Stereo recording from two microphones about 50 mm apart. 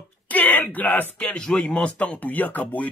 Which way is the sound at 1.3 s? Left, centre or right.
Centre.